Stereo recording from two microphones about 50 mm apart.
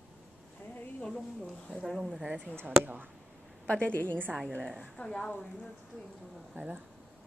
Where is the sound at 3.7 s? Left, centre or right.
Left.